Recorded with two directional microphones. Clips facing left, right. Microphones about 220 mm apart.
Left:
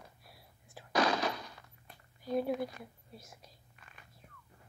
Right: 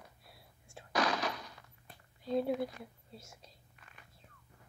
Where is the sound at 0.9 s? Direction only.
25° left (ahead or behind).